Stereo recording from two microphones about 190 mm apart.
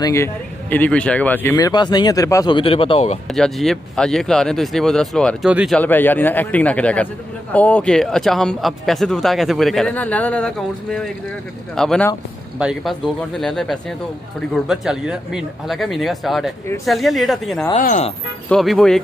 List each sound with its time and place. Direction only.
0.0 s speech: 15° left (ahead or behind); by 3.2 s 30° left (ahead or behind)
3.3 s speech: centre (ahead or behind)
5.8 s a man's voice: 10° left (ahead or behind)
17.7 s speech: 40° left (ahead or behind)
18.5 s speech: centre (ahead or behind)